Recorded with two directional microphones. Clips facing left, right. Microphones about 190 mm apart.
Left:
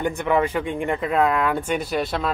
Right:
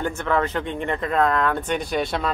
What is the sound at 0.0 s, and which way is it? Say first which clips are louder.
Speech: left 2 dB; 15° left (ahead or behind).